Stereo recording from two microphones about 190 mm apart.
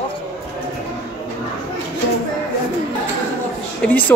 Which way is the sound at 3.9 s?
10° left (ahead or behind).